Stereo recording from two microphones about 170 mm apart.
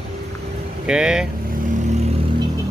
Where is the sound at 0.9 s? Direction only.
5° right (ahead or behind).